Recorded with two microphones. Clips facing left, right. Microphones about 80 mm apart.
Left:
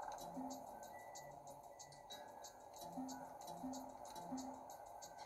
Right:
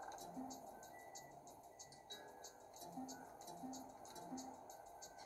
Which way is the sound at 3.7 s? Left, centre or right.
Right.